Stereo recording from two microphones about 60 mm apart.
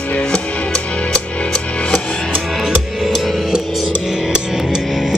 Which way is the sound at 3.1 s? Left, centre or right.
Centre.